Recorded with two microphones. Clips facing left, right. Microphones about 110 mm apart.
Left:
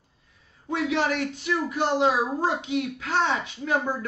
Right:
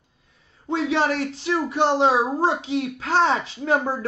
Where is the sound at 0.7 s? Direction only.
30° right (ahead or behind).